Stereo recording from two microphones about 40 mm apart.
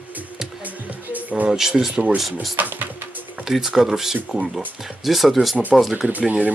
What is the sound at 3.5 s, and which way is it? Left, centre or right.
Speech, centre.